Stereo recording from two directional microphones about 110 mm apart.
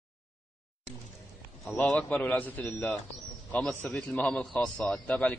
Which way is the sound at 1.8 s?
15° left (ahead or behind).